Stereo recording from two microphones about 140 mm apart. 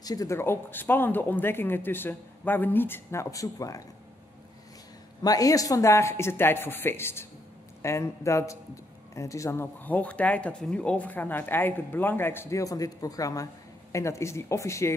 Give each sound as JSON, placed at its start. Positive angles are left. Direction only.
{"t": 0.0, "sound": "speech", "side_deg": 25}
{"t": 5.2, "sound": "speech", "side_deg": 25}